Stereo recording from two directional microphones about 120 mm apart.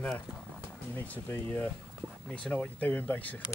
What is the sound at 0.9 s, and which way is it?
Speech, 15° left (ahead or behind).